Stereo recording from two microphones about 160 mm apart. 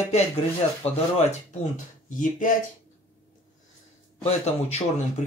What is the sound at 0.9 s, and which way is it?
Speech, 40° left (ahead or behind).